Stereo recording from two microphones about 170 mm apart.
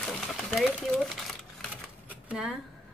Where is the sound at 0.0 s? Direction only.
Centre (ahead or behind).